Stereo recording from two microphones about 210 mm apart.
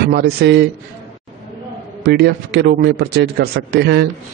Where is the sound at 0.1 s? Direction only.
50° right (ahead or behind).